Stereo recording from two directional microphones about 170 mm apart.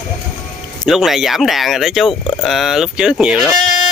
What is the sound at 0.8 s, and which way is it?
Speech, centre (ahead or behind).